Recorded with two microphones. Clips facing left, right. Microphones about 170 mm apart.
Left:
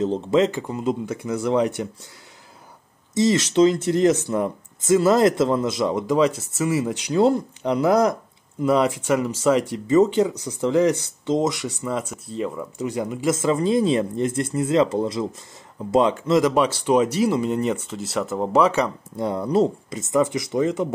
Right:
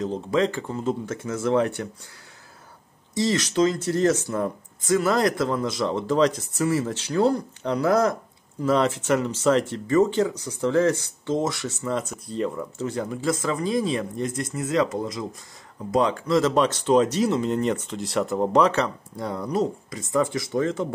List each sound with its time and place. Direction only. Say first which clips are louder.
0.0 s speech: left 4 dB; 25° left (ahead or behind)
3.2 s speech: left 4 dB; 20° left (ahead or behind); by 12.8 s 5° left (ahead or behind)
12.8 s speech: left 3 dB; 15° left (ahead or behind)
19.1 s speech: left 5 dB; 25° left (ahead or behind)